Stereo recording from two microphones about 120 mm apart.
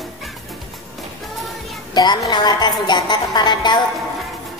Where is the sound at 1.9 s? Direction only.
35° left (ahead or behind).